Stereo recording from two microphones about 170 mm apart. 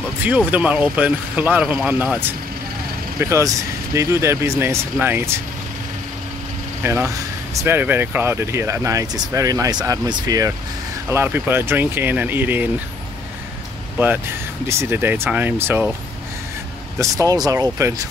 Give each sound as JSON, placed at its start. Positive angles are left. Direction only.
{"t": 0.5, "sound": "speech", "side_deg": -10}
{"t": 6.8, "sound": "speech", "side_deg": -15}
{"t": 14.7, "sound": "speech", "side_deg": -15}
{"t": 17.0, "sound": "speech", "side_deg": -20}